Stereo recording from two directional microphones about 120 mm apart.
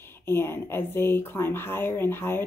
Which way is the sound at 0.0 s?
20° left (ahead or behind).